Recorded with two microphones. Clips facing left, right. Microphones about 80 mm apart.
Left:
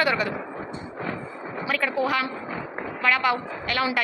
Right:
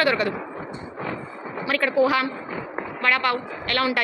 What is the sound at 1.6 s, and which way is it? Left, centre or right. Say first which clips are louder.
A woman's voice: right 5 dB; centre.